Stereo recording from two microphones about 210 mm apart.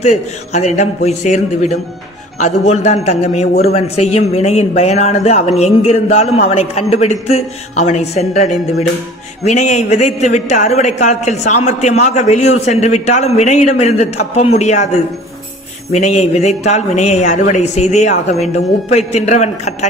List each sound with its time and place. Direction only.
0.0 s a man's voice: 30° left (ahead or behind)
15.9 s a man's voice: 35° left (ahead or behind)